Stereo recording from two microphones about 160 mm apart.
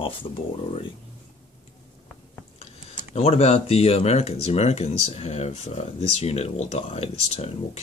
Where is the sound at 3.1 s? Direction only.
40° left (ahead or behind).